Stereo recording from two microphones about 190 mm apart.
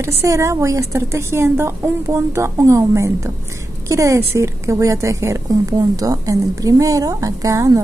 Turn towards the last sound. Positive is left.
turn(degrees=-15)  # may be behind; listen again after turning